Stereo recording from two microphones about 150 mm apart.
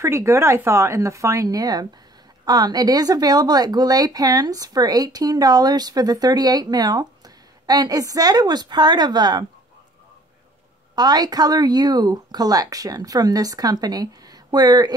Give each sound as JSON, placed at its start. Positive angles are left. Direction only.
{"t": 0.0, "sound": "speech", "side_deg": -20}
{"t": 11.0, "sound": "speech", "side_deg": -25}